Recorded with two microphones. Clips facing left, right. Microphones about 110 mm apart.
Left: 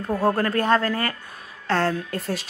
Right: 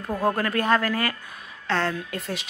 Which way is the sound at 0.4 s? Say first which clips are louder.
Left 2 dB; 35° left (ahead or behind).